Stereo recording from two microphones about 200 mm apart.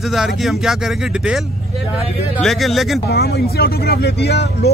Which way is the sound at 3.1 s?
50° left (ahead or behind).